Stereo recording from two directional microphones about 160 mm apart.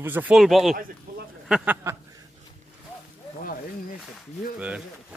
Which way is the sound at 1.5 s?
5° right (ahead or behind).